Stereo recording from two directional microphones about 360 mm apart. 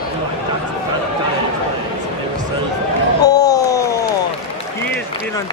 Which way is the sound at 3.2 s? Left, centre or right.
Centre.